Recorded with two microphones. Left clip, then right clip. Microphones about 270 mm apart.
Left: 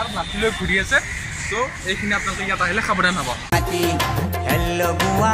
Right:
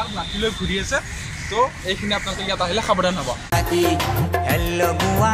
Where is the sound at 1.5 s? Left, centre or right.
Centre.